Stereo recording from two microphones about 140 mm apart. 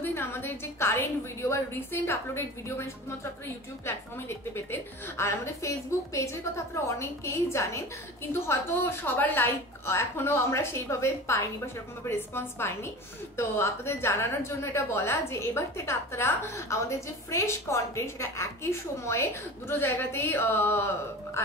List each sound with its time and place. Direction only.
0.0 s a woman's voice: 15° left (ahead or behind)